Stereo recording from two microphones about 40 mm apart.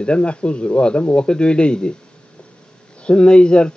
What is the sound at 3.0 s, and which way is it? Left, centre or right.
Speech, left.